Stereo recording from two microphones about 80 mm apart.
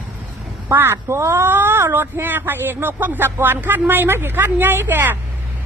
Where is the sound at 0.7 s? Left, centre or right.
Right.